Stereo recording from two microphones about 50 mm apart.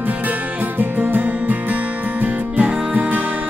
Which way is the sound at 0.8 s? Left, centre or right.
Right.